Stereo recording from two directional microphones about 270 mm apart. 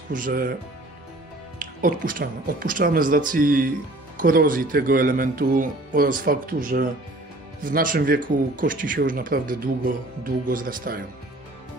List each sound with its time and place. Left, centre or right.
0.1 s speech: right
1.6 s speech: right